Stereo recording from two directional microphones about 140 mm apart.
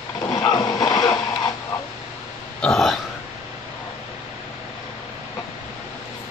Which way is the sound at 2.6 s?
5° left (ahead or behind).